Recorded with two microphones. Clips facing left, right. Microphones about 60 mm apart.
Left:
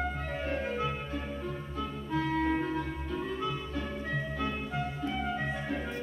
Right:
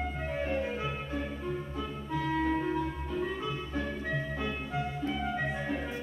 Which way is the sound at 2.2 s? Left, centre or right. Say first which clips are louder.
Even; centre.